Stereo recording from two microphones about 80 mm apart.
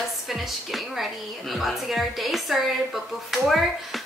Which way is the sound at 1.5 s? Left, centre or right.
Centre.